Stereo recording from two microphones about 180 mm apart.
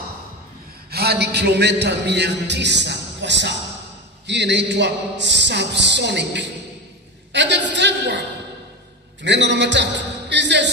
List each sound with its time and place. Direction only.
0.8 s a man's voice: 60° right (ahead or behind); by 8.2 s 80° right
9.2 s a man's voice: 80° right